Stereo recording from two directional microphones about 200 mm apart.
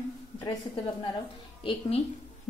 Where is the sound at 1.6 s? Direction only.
25° left (ahead or behind).